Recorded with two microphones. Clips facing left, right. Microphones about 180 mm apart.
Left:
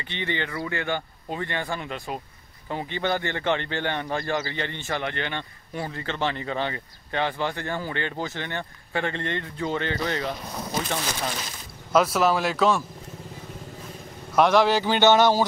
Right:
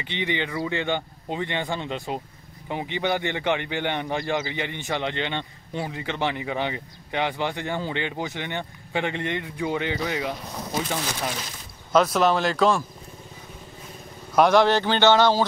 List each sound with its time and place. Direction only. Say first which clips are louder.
0.0 s a man's voice: right 2 dB; 15° right (ahead or behind)
11.9 s speech: right 1 dB; 5° left (ahead or behind)
14.3 s speech: right 1 dB; centre (ahead or behind)